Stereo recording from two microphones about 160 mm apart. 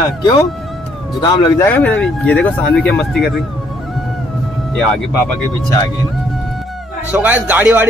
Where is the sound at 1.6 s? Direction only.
10° left (ahead or behind).